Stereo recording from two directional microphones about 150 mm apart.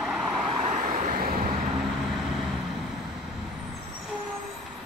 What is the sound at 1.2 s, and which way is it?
Vehicle, 75° right (ahead or behind).